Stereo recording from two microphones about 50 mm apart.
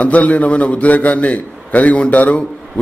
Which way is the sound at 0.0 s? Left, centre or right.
Left.